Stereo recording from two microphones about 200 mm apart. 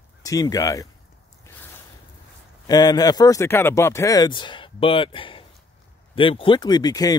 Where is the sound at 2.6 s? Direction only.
20° left (ahead or behind).